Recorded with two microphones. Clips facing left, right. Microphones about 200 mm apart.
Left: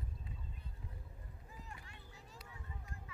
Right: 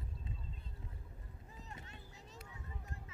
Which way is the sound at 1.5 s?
25° right (ahead or behind).